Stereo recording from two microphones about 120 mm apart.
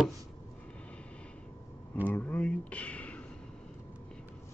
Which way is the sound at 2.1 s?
10° left (ahead or behind).